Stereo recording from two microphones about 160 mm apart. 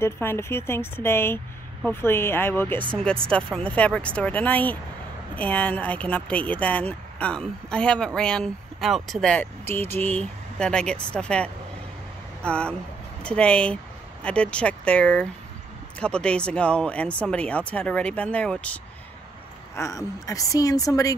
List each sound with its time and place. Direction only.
0.0 s speech: 15° left (ahead or behind)
19.7 s a woman's voice: 20° left (ahead or behind)